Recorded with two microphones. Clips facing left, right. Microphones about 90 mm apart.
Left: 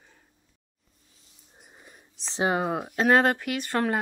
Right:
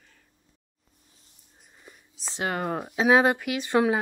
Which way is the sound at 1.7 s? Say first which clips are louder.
Right 1 dB; 30° left (ahead or behind).